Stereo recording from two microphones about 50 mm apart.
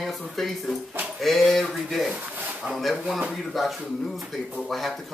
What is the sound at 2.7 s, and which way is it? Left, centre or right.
Speech, centre.